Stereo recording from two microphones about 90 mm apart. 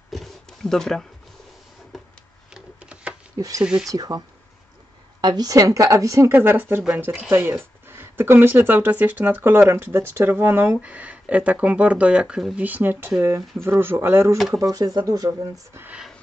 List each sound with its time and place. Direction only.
0.1 s a sound: 5° left (ahead or behind)
2.5 s a sound: 10° right (ahead or behind)
3.3 s speech: 40° right (ahead or behind)
5.2 s speech: 50° right (ahead or behind)
6.3 s speech: 20° right (ahead or behind); by 12.5 s 5° right (ahead or behind)
12.5 s speech: 20° right (ahead or behind)
14.5 s speech: 40° right (ahead or behind)